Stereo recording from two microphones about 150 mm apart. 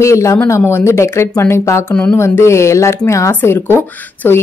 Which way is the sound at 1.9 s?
10° left (ahead or behind).